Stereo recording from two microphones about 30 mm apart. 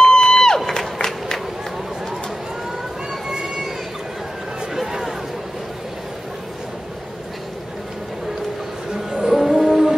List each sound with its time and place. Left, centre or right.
0.0 s a sound: left
0.7 s crowd: left
3.1 s children playing: right
9.1 s music: centre